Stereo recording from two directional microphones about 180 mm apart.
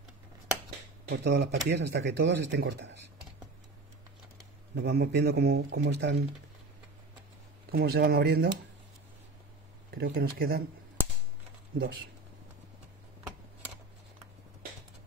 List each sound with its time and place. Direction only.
1.0 s speech: 70° right (ahead or behind)
4.8 s speech: 60° right (ahead or behind)
7.7 s speech: 60° right (ahead or behind)
9.8 s speech: 60° right (ahead or behind)